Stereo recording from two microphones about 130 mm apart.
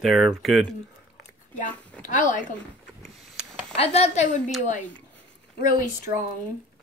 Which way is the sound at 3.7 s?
55° left (ahead or behind).